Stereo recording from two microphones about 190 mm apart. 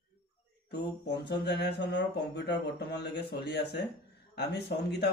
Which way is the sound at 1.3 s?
60° left (ahead or behind).